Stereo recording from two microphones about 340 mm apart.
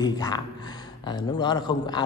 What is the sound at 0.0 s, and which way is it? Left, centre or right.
A man's voice, centre.